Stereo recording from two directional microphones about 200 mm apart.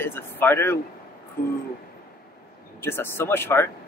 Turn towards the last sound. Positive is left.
turn(degrees=10)  # may be behind; listen again after turning